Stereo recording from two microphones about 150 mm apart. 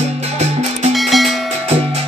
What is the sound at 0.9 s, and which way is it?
Music, centre (ahead or behind).